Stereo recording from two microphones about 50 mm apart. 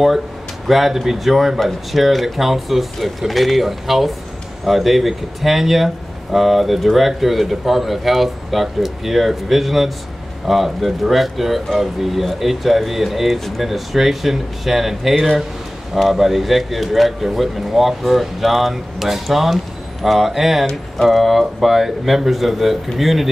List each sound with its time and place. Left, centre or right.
0.7 s speech: centre